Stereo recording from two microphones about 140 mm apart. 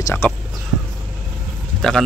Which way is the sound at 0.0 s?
15° left (ahead or behind).